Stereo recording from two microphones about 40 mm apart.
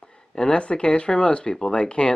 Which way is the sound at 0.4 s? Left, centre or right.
Left.